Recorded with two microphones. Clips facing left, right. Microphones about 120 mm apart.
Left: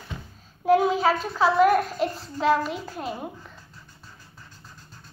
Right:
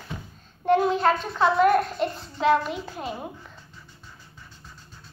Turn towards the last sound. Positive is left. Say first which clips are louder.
# left 1 dB
turn(degrees=0)  # may be behind; listen again after turning